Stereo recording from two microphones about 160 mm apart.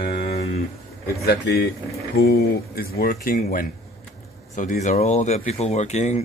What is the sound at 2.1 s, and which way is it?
Speech, 75° left (ahead or behind).